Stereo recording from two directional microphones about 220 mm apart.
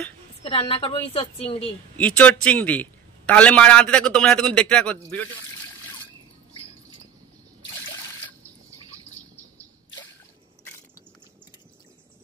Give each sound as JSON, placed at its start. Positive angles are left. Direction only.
{"t": 0.4, "sound": "a woman's voice", "side_deg": 25}
{"t": 2.0, "sound": "a man's voice", "side_deg": 5}